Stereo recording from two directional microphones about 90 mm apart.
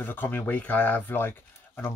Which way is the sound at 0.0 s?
20° left (ahead or behind).